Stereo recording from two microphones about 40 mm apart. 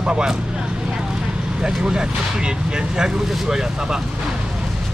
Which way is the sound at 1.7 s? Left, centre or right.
Centre.